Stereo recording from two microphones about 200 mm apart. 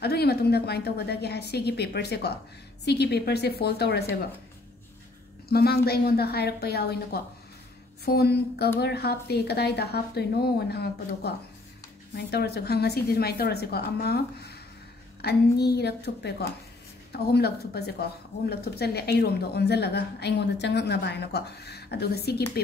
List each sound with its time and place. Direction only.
0.0 s a woman's voice: 55° left (ahead or behind)
5.5 s a woman's voice: 50° left (ahead or behind)